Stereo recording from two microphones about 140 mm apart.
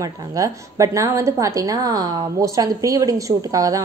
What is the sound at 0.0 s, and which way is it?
A woman's voice, 25° right (ahead or behind).